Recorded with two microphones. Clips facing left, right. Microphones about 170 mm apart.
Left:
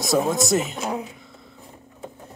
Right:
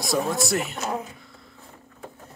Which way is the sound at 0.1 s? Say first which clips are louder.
Left 4 dB; 20° left (ahead or behind).